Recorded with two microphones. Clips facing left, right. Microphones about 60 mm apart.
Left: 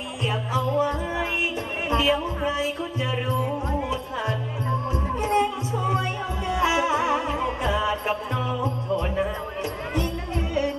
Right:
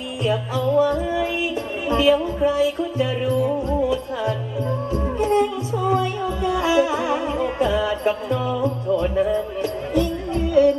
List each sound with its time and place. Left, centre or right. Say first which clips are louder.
0.2 s music: right 4 dB; left